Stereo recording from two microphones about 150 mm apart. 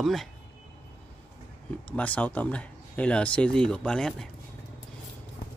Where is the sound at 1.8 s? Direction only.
10° left (ahead or behind).